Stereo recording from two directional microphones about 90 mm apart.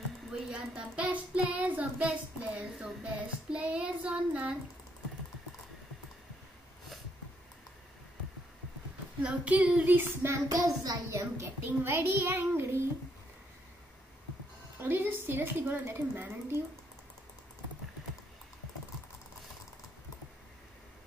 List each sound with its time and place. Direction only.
0.5 s child singing: 10° right (ahead or behind)
9.2 s child singing: 15° right (ahead or behind)
10.5 s a child's voice: 40° right (ahead or behind); by 12.6 s 25° right (ahead or behind)
14.8 s a child's voice: 25° right (ahead or behind)